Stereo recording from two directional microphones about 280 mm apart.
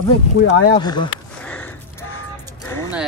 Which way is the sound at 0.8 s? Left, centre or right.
Centre.